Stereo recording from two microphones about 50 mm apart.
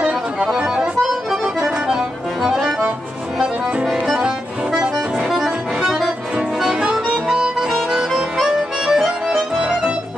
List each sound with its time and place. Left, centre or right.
1.0 s accordion: centre
3.3 s music: centre
4.9 s accordion: centre
6.3 s music: centre
9.6 s accordion: centre